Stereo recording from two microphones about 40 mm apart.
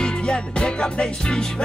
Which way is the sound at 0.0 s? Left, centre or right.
Left.